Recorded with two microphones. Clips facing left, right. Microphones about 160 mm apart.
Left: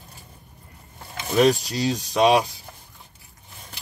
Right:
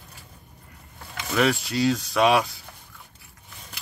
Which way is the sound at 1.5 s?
40° left (ahead or behind).